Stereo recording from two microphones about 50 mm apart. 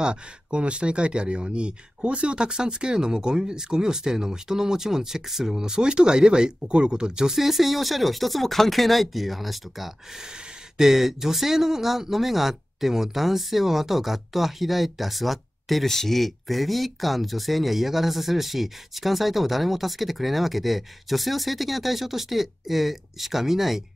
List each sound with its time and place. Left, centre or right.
0.0 s speech: right